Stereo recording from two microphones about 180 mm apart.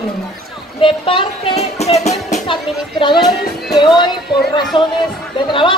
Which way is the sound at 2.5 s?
25° left (ahead or behind).